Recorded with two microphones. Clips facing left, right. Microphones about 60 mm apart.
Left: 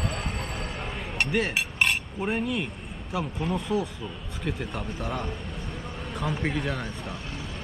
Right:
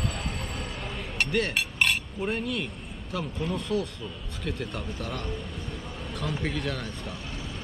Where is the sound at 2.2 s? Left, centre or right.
Centre.